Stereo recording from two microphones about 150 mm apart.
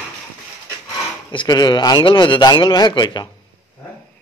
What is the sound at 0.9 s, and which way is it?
Speech, 25° left (ahead or behind).